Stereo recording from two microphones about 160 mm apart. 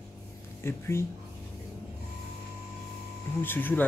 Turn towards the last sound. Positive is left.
turn(degrees=10)  # may be behind; listen again after turning